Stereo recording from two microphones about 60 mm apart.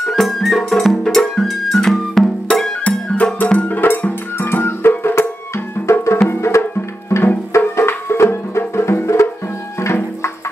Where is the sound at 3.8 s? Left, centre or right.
Left.